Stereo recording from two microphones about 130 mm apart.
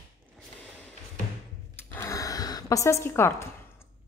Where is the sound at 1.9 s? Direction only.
20° left (ahead or behind).